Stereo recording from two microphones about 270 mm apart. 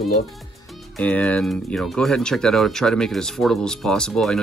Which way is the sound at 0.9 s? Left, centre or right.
Centre.